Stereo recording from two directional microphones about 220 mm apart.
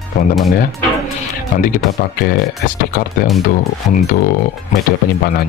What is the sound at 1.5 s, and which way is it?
Speech, 40° left (ahead or behind).